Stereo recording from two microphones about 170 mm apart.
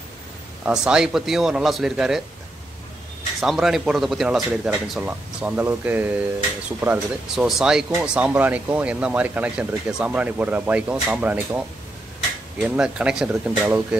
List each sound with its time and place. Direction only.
0.7 s speech: 5° right (ahead or behind)
3.3 s speech: centre (ahead or behind)